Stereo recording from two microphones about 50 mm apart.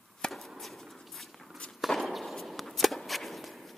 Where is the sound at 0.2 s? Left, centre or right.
Centre.